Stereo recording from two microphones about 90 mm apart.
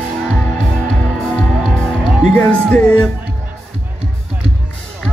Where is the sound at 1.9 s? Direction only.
10° left (ahead or behind).